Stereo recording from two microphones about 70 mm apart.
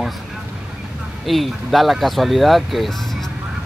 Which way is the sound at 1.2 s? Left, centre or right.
Centre.